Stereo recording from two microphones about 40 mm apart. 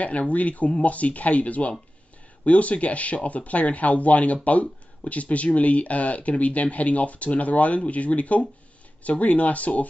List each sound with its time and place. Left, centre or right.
0.3 s speech: left